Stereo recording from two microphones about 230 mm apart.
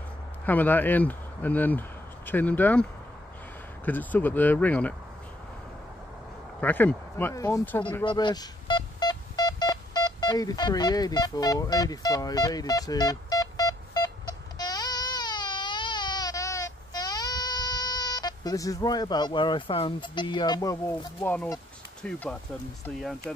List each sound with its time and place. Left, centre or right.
0.5 s speech: centre
6.6 s speech: centre
8.0 s telephone dialing: centre
21.2 s speech: centre